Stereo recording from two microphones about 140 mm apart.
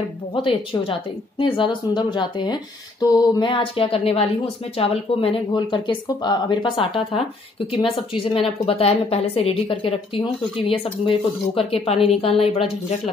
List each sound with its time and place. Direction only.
0.3 s speech: 35° left (ahead or behind)
5.6 s a woman's voice: 35° left (ahead or behind)